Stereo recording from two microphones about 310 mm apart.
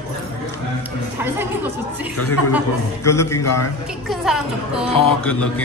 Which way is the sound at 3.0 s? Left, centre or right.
Centre.